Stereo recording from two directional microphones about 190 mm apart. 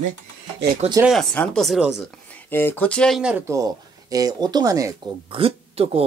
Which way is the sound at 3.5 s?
20° right (ahead or behind).